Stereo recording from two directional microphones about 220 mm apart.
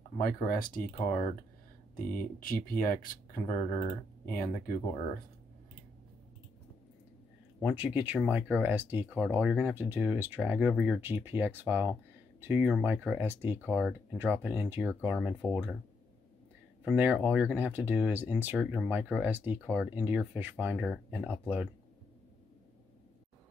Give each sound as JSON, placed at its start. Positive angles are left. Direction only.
{"t": 0.2, "sound": "speech", "side_deg": 40}
{"t": 7.6, "sound": "speech", "side_deg": -5}
{"t": 16.8, "sound": "speech", "side_deg": -10}